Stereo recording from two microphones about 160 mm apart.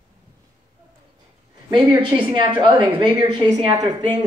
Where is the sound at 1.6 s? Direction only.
25° right (ahead or behind).